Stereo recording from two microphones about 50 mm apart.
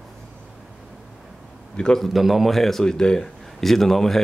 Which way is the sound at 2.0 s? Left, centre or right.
Centre.